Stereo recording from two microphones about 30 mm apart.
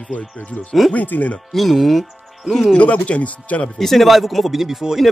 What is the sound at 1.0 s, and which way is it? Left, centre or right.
Speech, left.